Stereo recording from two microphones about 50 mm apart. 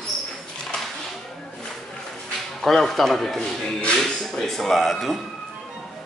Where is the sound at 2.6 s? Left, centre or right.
Centre.